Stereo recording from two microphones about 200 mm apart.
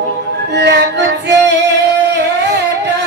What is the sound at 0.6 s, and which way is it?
Music, 60° right (ahead or behind).